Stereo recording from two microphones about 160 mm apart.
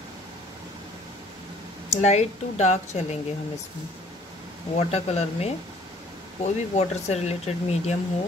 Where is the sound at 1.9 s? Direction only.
45° left (ahead or behind).